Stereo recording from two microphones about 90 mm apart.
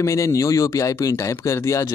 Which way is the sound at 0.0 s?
35° left (ahead or behind).